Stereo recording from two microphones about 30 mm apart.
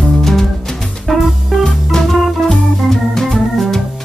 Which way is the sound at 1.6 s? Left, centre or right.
Left.